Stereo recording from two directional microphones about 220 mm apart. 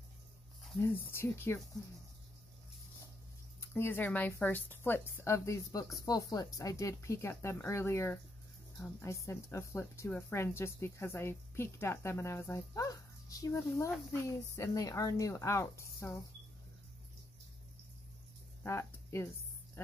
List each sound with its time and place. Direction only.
0.7 s speech: 10° left (ahead or behind)
3.7 s speech: 10° left (ahead or behind)
18.6 s a sound: 10° left (ahead or behind)